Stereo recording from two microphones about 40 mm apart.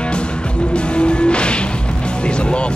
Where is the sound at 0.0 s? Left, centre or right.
Left.